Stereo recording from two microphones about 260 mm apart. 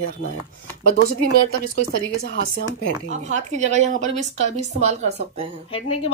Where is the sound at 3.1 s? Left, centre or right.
Right.